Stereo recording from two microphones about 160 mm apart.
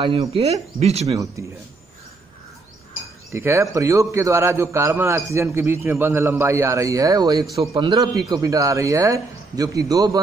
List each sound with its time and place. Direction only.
0.0 s speech: 35° right (ahead or behind)
1.0 s a man's voice: 20° right (ahead or behind)
3.3 s a man's voice: 15° right (ahead or behind)